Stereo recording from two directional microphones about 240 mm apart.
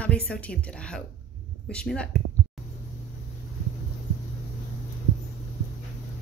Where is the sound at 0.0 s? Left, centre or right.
Centre.